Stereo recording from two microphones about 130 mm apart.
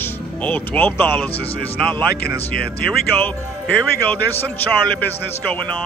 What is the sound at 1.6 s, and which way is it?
Speech, 10° left (ahead or behind).